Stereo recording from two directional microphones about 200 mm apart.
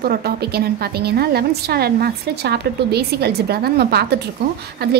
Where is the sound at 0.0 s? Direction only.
50° right (ahead or behind).